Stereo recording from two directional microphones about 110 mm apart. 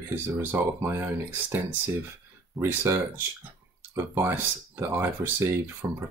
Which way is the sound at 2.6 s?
25° right (ahead or behind).